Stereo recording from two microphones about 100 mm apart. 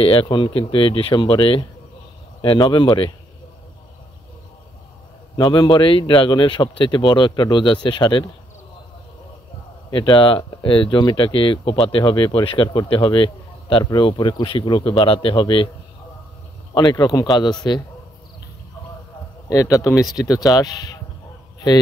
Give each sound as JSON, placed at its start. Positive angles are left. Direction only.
{"t": 0.0, "sound": "speech", "side_deg": 65}
{"t": 5.4, "sound": "speech", "side_deg": 50}
{"t": 9.8, "sound": "a man's voice", "side_deg": 50}
{"t": 16.9, "sound": "speech", "side_deg": 35}
{"t": 19.5, "sound": "speech", "side_deg": 35}